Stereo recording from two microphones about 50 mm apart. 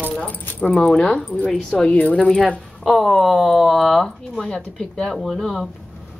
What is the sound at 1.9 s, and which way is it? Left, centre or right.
Speech, left.